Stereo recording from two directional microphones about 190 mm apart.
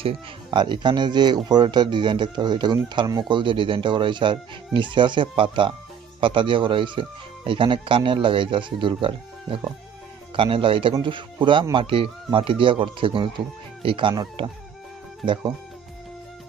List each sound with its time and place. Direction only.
0.0 s speech: 25° right (ahead or behind)